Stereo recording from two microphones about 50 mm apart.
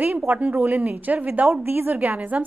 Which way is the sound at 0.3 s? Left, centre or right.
Right.